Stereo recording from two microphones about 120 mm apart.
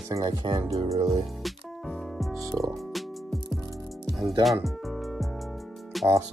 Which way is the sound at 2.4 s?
30° right (ahead or behind).